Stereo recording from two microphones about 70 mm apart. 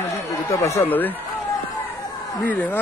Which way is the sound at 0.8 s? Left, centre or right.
Left.